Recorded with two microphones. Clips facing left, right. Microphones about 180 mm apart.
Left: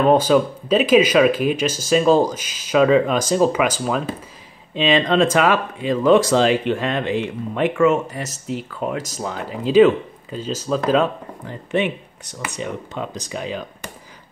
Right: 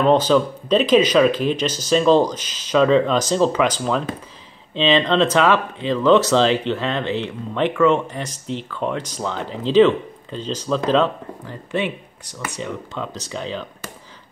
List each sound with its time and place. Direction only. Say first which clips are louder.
0.0 s speech: left 1 dB; 10° left (ahead or behind)
11.4 s speech: left 3 dB; 20° left (ahead or behind)